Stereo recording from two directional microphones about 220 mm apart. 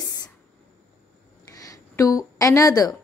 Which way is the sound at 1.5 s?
15° left (ahead or behind).